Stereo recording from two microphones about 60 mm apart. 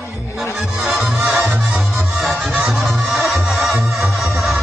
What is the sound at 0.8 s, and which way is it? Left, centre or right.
Music, centre.